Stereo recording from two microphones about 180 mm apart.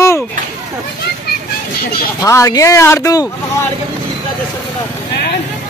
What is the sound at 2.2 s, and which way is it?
A man's voice, 15° left (ahead or behind).